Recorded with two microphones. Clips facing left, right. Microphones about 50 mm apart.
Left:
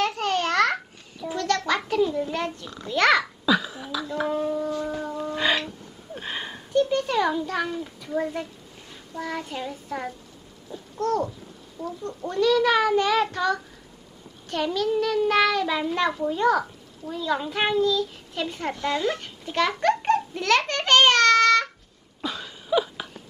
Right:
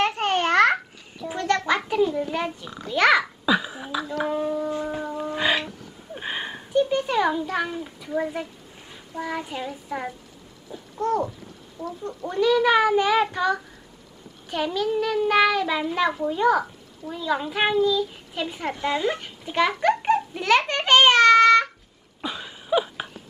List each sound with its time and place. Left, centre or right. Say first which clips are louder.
0.0 s babbling: right 2 dB; right
1.3 s a sound: right 2 dB; right
2.0 s speech: right 1 dB; centre
3.4 s a sound: even; centre
4.2 s speech: even; centre
5.0 s music: even; centre
6.1 s a sound: right 2 dB; centre
8.9 s a child's voice: right 1 dB; centre
10.7 s babbling: right 1 dB; centre
11.8 s speech: even; right
12.3 s speech: right 1 dB; centre
18.7 s babbling: right 1 dB; centre
22.2 s a sound: even; centre